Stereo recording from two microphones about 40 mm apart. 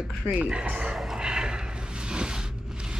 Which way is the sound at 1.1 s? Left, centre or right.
Centre.